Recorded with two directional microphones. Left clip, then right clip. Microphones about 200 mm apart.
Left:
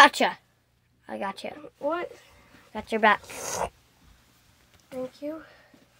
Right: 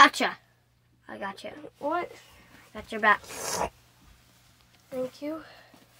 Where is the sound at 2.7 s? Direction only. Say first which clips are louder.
Left 2 dB; 20° left (ahead or behind).